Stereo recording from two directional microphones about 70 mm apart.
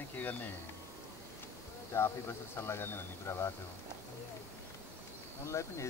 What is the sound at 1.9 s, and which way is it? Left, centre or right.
Speech, left.